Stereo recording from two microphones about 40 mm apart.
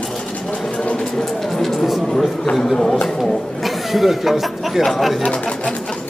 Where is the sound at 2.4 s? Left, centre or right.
Centre.